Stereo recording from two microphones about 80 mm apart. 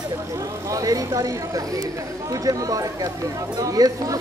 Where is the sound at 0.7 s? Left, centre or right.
Right.